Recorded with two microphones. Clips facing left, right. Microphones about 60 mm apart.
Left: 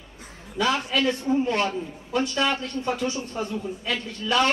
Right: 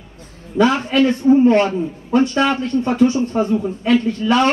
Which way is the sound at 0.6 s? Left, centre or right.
Right.